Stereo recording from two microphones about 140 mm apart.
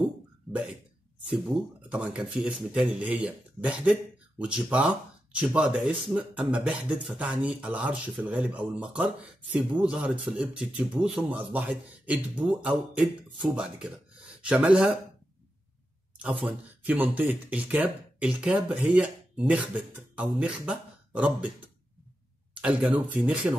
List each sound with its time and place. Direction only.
1.9 s speech: 10° right (ahead or behind)
16.2 s speech: 10° right (ahead or behind)
22.5 s speech: 10° right (ahead or behind)